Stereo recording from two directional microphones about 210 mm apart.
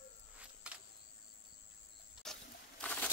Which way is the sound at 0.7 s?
5° right (ahead or behind).